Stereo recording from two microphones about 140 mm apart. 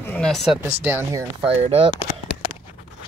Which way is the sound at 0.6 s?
15° right (ahead or behind).